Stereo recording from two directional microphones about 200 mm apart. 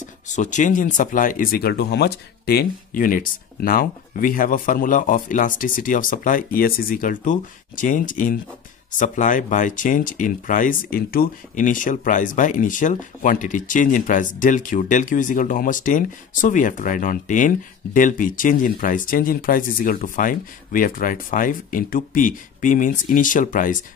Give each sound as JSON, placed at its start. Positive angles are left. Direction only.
{"t": 0.4, "sound": "speech", "side_deg": 40}